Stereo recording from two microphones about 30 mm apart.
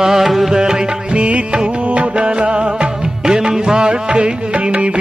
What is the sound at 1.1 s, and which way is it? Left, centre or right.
Music, right.